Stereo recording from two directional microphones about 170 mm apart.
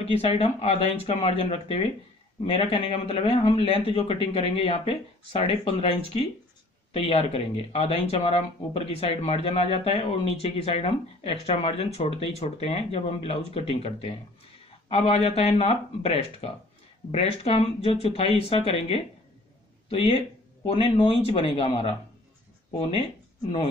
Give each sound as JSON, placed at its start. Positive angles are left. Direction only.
{"t": 0.0, "sound": "speech", "side_deg": 35}